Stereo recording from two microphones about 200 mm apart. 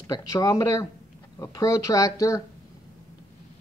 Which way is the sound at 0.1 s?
15° left (ahead or behind).